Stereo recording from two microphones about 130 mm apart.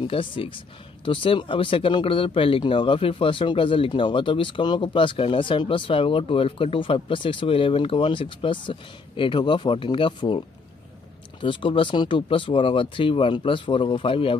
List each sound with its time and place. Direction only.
0.0 s speech: 45° left (ahead or behind)
11.4 s speech: 40° left (ahead or behind)